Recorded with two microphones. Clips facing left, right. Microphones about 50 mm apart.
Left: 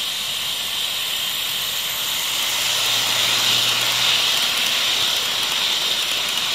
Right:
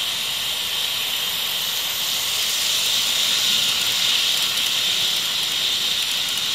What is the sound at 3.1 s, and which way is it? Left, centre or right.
Vehicle, left.